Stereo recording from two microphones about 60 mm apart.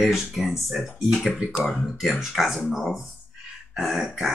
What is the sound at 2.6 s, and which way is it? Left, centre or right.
Speech, centre.